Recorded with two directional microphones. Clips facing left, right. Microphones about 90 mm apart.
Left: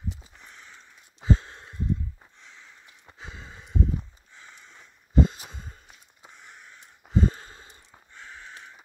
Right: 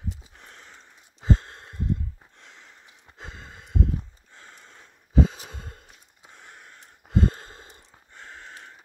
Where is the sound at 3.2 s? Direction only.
55° right (ahead or behind).